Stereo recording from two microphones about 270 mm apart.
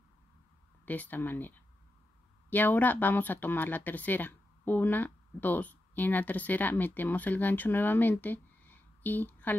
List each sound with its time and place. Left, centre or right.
0.8 s speech: centre
2.5 s speech: centre